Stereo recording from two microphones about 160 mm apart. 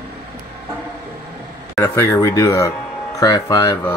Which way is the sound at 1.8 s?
15° left (ahead or behind).